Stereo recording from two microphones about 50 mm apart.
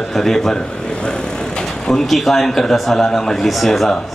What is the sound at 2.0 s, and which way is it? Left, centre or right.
A man's voice, centre.